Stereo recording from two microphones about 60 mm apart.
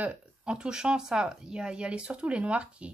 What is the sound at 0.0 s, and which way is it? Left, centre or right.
Speech, centre.